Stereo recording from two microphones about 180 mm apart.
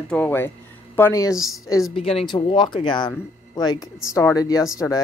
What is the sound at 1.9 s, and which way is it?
A woman's voice, 35° left (ahead or behind).